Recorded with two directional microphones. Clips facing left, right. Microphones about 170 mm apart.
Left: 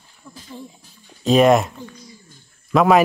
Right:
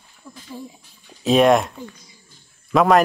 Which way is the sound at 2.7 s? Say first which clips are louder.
Left 1 dB; centre (ahead or behind).